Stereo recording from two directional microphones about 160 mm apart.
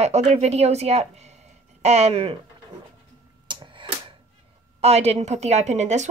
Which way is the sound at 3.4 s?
30° right (ahead or behind).